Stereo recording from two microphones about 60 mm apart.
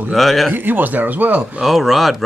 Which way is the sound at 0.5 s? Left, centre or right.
Right.